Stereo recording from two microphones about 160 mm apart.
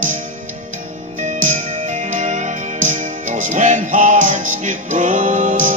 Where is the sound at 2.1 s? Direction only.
50° right (ahead or behind).